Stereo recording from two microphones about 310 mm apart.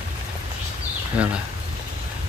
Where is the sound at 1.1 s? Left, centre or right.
Centre.